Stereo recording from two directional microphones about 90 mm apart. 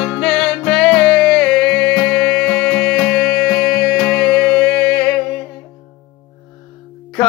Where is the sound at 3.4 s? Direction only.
5° right (ahead or behind).